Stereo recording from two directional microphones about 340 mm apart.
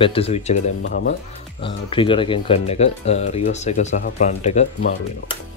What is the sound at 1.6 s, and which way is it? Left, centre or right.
Speech, centre.